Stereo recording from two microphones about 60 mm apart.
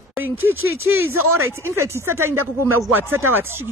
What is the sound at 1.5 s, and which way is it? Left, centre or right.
Speech, right.